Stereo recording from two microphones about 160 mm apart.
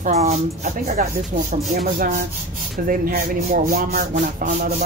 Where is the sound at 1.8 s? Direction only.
65° right (ahead or behind).